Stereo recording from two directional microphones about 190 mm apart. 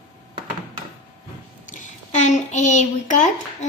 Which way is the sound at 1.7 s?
35° left (ahead or behind).